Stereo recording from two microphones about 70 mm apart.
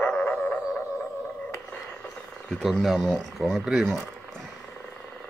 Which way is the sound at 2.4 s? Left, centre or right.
Centre.